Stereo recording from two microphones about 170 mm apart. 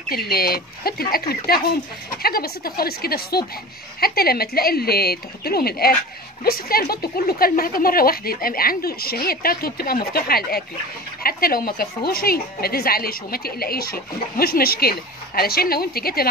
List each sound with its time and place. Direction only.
0.1 s a woman's voice: 60° left (ahead or behind)